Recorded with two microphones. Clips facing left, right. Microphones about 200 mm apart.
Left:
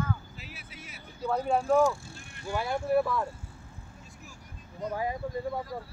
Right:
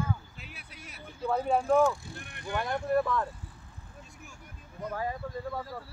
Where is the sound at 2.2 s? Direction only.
60° right (ahead or behind).